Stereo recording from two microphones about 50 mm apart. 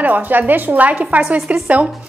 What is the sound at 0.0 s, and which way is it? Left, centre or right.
A woman's voice, right.